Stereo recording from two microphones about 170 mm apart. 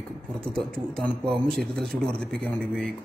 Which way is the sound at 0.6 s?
5° left (ahead or behind).